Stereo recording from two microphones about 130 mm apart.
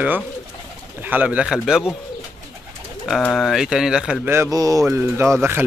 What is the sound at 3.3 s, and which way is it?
Speech, centre (ahead or behind).